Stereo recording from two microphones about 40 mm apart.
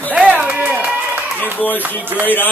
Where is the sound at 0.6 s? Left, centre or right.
Right.